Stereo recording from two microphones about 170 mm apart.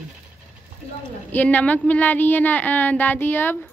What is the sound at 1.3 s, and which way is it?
Speech, 10° left (ahead or behind).